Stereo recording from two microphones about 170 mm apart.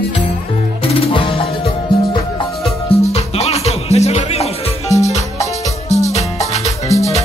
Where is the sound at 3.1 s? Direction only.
40° left (ahead or behind).